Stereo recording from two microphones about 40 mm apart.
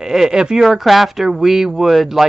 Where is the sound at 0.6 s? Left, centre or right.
Centre.